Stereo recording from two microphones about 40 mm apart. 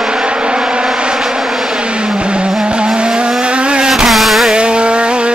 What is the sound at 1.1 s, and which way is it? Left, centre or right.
Vehicle, centre.